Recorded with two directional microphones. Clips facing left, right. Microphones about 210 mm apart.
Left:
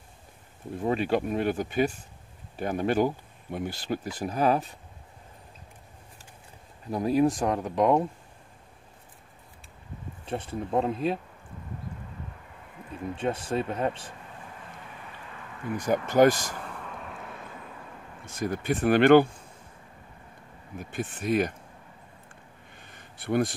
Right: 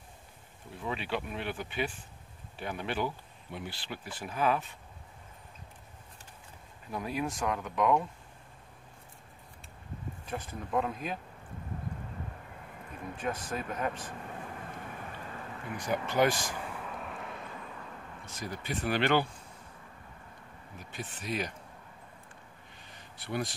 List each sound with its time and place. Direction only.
0.7 s speech: 45° left (ahead or behind)
6.9 s speech: 40° left (ahead or behind)
10.2 s speech: 30° left (ahead or behind)
13.1 s speech: 30° left (ahead or behind)
15.7 s speech: 45° left (ahead or behind)
16.6 s vehicle: 5° right (ahead or behind)
18.2 s speech: 50° left (ahead or behind)
20.9 s speech: 50° left (ahead or behind)
22.9 s a sound: 50° left (ahead or behind)